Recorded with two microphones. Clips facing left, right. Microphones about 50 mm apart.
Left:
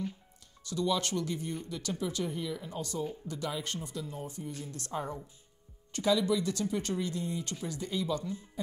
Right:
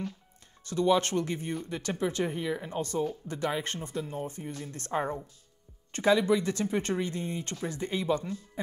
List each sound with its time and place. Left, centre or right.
0.7 s speech: right